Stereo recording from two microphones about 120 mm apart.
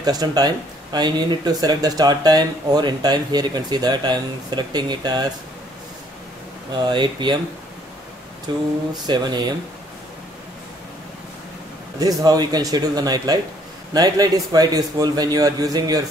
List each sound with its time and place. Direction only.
0.0 s speech: 35° right (ahead or behind)
6.7 s speech: 40° right (ahead or behind)
8.5 s speech: 40° right (ahead or behind)
12.0 s speech: 30° right (ahead or behind)